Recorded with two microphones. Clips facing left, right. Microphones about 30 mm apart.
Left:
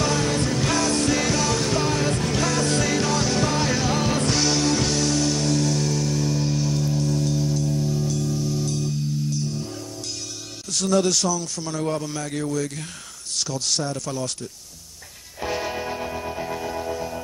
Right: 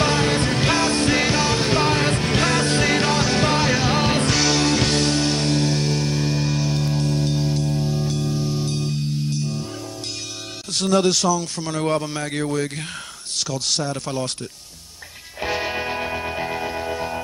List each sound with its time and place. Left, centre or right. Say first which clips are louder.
0.0 s music: right 3 dB; right
4.3 s music: right 2 dB; centre
4.6 s music: right 3 dB; right
10.7 s speech: right 2 dB; right
14.0 s speech: right 2 dB; right
15.4 s music: right 3 dB; right